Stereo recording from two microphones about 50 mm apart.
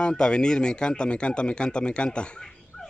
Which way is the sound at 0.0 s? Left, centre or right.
Centre.